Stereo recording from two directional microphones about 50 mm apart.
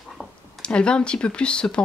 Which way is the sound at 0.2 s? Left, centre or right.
Centre.